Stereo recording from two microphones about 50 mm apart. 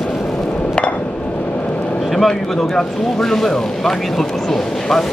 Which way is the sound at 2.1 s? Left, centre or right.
Centre.